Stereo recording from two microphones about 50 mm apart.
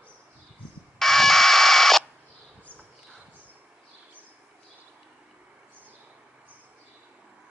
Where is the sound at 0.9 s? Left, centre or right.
Centre.